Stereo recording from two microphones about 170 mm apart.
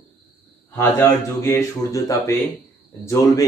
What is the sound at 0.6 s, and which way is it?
Speech, 10° left (ahead or behind).